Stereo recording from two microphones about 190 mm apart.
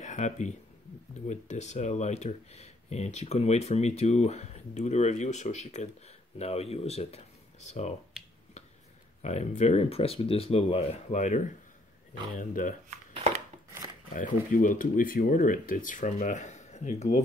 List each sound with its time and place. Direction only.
0.0 s speech: 40° left (ahead or behind)
8.2 s finger snapping: centre (ahead or behind)
9.2 s speech: 35° left (ahead or behind)
14.1 s speech: 45° left (ahead or behind)